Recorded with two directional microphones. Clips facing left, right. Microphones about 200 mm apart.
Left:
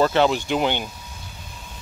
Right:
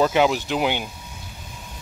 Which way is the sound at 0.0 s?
10° right (ahead or behind).